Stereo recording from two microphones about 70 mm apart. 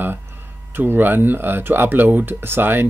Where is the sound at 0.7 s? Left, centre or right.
Right.